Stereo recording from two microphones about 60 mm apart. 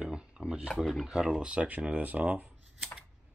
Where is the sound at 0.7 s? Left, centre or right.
Centre.